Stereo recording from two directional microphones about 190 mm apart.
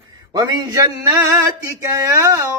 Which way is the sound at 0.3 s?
20° right (ahead or behind).